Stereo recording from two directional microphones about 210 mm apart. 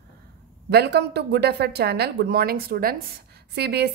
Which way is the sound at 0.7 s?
50° right (ahead or behind).